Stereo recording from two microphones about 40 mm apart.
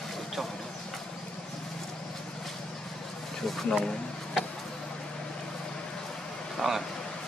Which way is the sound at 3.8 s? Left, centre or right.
Centre.